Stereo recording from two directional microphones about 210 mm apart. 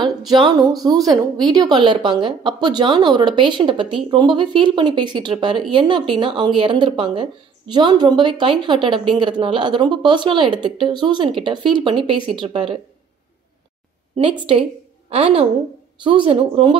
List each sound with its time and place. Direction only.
0.3 s a woman's voice: 20° right (ahead or behind)
14.4 s a woman's voice: 25° right (ahead or behind)